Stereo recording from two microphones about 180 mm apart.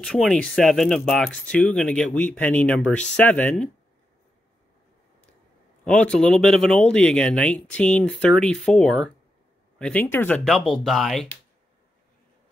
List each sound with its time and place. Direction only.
0.0 s speech: 5° left (ahead or behind)
5.9 s speech: 5° left (ahead or behind)